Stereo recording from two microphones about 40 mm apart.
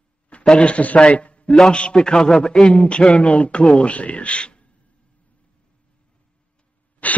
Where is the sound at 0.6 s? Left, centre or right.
Left.